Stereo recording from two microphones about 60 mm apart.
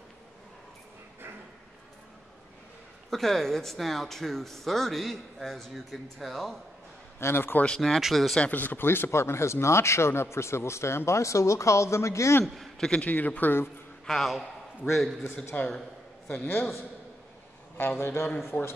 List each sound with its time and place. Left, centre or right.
3.1 s speech: centre
7.2 s a man's voice: left
7.6 s speech: centre
8.4 s speech: left
12.5 s a man's voice: centre
13.0 s a man's voice: left
14.0 s speech: centre
15.5 s a man's voice: left
16.4 s a man's voice: left